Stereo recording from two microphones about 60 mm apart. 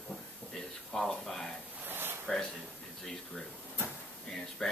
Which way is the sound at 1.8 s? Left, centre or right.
Right.